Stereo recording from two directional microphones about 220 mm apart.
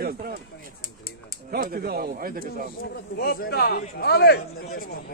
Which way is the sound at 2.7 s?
45° left (ahead or behind).